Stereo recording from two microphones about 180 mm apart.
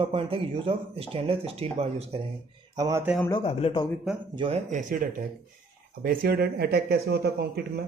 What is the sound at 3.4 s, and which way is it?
Speech, 35° left (ahead or behind).